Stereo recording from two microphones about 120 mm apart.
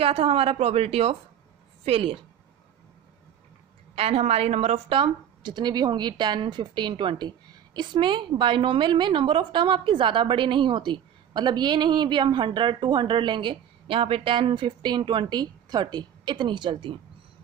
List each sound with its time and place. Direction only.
0.0 s a woman's voice: 55° right (ahead or behind)
3.9 s a woman's voice: 55° right (ahead or behind)